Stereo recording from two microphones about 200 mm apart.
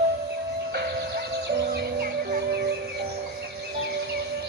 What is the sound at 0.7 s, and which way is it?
Music, 55° right (ahead or behind).